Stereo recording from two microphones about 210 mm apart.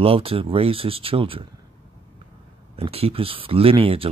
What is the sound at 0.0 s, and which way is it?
Speech, 25° right (ahead or behind).